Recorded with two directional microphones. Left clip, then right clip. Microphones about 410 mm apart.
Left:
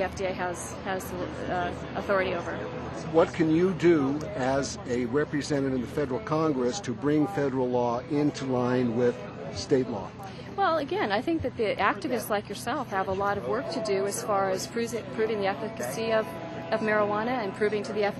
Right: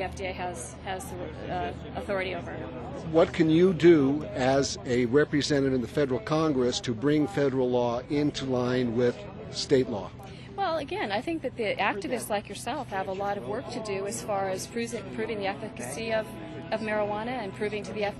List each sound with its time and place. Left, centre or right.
0.0 s speech: right
2.0 s speech: right
3.5 s a man's voice: right
10.6 s speech: right